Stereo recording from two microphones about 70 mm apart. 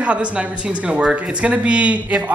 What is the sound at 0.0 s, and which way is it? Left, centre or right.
Speech, centre.